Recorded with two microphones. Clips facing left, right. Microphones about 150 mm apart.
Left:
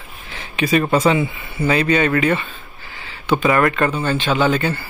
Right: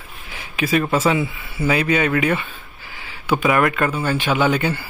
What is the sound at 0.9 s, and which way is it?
A man's voice, 5° right (ahead or behind).